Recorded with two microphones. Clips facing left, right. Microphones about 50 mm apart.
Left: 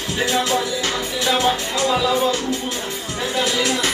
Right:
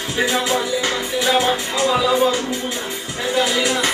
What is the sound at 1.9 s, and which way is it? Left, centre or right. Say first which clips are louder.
Music: right 2 dB; centre.